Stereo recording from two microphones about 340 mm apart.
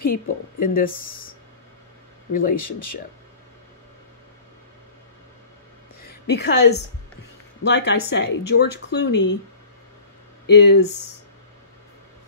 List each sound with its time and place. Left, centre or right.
0.0 s speech: left
2.5 s speech: left
6.3 s a woman's voice: left
10.5 s a woman's voice: left